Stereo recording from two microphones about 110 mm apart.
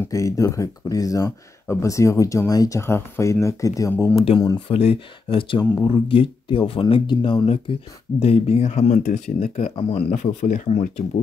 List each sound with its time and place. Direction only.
0.1 s speech: 30° left (ahead or behind)
4.6 s speech: 65° left (ahead or behind)
5.6 s speech: 35° left (ahead or behind)
6.0 s speech: 55° left (ahead or behind)
7.4 s speech: 65° left (ahead or behind); by 9.5 s 90° left
9.8 s speech: 65° left (ahead or behind); by 11.1 s 90° left